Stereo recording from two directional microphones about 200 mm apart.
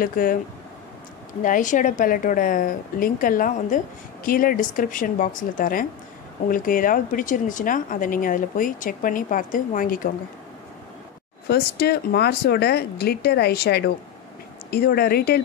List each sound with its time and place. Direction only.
0.0 s a woman's voice: 45° left (ahead or behind)
1.4 s a woman's voice: 40° left (ahead or behind)
11.4 s a woman's voice: 50° left (ahead or behind)